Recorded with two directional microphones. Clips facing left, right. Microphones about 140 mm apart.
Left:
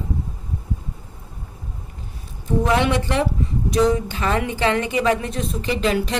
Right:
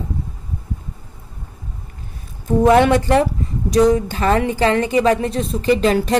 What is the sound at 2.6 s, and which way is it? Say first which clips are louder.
A woman's voice: right 8 dB; 45° right (ahead or behind).